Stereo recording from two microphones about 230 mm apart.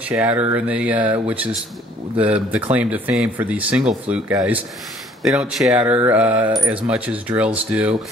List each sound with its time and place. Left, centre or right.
0.1 s speech: centre